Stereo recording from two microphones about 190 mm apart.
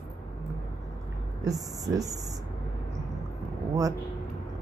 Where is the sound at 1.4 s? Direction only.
20° right (ahead or behind).